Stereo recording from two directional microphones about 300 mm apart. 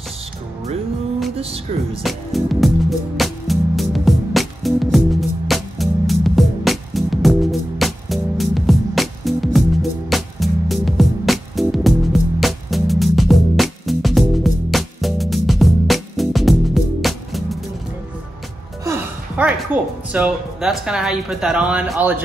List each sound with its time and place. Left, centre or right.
1.3 s music: centre
2.0 s music: centre
18.9 s music: centre